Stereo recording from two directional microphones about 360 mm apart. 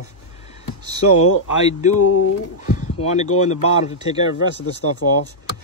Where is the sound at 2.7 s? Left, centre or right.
Centre.